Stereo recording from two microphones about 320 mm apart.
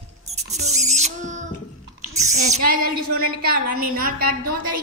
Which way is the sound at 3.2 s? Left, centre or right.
Right.